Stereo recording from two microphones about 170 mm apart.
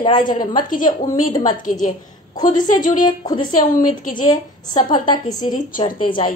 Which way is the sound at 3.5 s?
50° left (ahead or behind).